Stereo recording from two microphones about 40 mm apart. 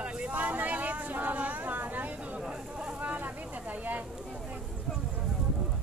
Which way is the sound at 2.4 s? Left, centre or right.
Right.